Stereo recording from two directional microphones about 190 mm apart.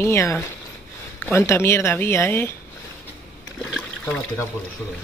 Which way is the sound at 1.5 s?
15° left (ahead or behind).